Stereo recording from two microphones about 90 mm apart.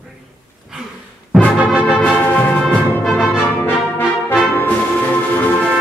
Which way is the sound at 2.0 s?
15° left (ahead or behind).